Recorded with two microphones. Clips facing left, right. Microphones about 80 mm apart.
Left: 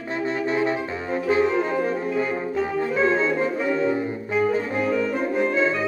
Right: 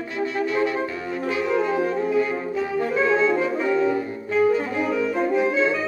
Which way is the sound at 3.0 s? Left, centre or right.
Left.